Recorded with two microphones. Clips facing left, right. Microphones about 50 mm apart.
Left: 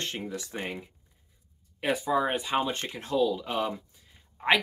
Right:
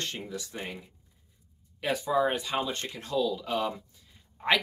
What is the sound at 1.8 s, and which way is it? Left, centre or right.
Speech, left.